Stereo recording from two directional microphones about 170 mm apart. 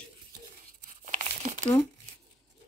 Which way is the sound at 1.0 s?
50° right (ahead or behind).